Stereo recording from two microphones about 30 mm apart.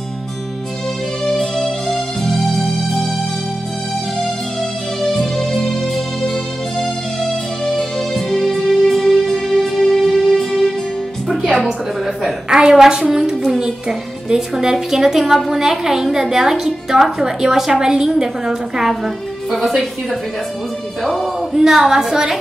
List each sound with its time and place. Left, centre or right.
1.2 s music: centre
5.0 s music: centre
6.8 s music: centre
7.7 s music: centre
12.4 s a sound: right
12.9 s a woman's voice: right
18.9 s speech: centre
21.6 s a woman's voice: centre